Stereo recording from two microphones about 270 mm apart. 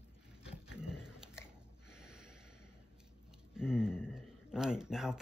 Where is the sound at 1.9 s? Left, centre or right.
Centre.